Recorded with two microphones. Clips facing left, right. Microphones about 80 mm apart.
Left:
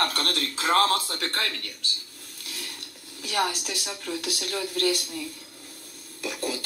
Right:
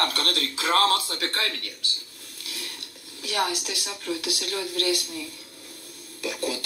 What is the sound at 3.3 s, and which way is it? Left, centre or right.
Speech, right.